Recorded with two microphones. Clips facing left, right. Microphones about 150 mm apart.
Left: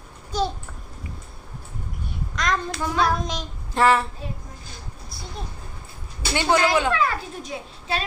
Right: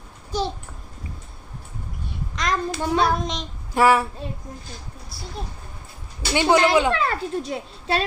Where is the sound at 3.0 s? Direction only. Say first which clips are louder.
Right 1 dB; centre (ahead or behind).